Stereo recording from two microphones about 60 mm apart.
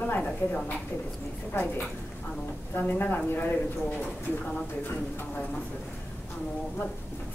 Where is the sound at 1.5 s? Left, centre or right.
Left.